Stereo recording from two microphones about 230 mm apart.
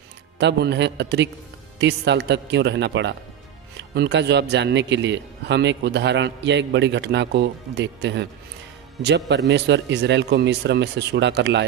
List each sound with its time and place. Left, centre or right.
0.4 s a man's voice: right